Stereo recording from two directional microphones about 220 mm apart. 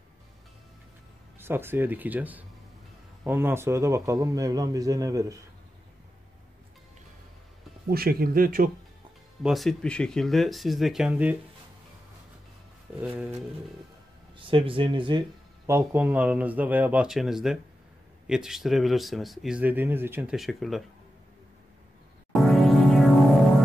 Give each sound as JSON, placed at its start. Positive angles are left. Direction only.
{"t": 1.4, "sound": "speech", "side_deg": -10}
{"t": 7.9, "sound": "speech", "side_deg": -45}
{"t": 9.4, "sound": "speech", "side_deg": 0}
{"t": 13.0, "sound": "speech", "side_deg": -5}
{"t": 14.4, "sound": "speech", "side_deg": -25}
{"t": 22.3, "sound": "music", "side_deg": 0}